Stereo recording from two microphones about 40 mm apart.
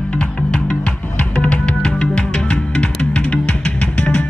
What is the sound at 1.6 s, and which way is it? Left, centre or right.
Music, left.